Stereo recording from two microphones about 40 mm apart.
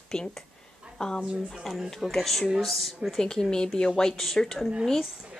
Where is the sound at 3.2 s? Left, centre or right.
Centre.